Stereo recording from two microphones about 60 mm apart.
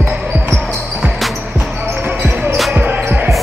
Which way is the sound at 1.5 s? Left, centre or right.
Right.